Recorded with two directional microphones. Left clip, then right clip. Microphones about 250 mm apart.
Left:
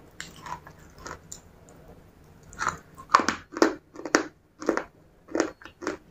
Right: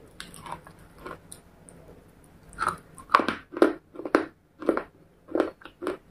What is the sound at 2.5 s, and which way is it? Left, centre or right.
Chewing, centre.